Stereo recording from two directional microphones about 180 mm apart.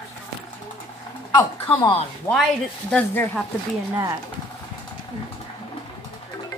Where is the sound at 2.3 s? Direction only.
15° left (ahead or behind).